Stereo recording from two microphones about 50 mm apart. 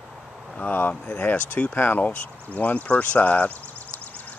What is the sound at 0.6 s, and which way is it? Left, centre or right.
Speech, left.